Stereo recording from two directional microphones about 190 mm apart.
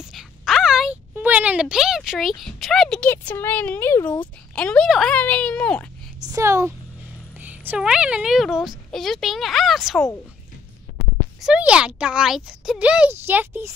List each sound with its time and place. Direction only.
0.0 s speech: centre (ahead or behind)
6.2 s a woman's voice: 15° right (ahead or behind)
11.0 s speech: 5° right (ahead or behind)